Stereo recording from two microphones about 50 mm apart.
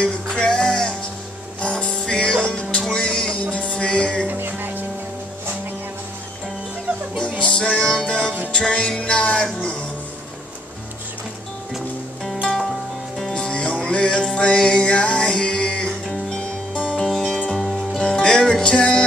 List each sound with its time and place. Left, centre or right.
0.0 s music: centre
4.3 s music: right
7.2 s music: centre
13.3 s music: centre
17.0 s music: centre
17.9 s music: centre